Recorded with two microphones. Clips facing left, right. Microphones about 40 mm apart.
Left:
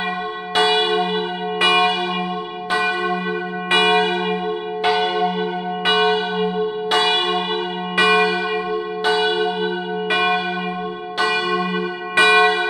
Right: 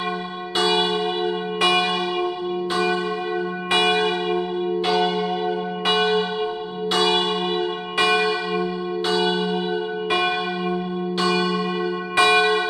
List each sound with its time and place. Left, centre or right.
0.6 s church bell: left